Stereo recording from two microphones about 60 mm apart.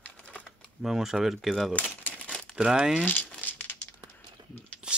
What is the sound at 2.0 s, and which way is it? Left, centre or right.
Crumpling, left.